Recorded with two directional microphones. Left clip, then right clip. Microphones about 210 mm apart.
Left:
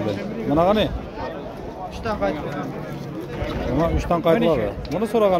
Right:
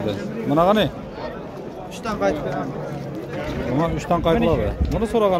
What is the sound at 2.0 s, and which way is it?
Speech, 50° right (ahead or behind).